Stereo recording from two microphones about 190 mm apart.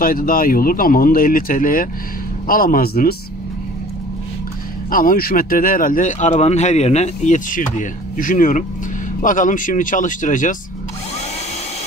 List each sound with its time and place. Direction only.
0.0 s speech: 50° left (ahead or behind)
4.9 s speech: 50° left (ahead or behind)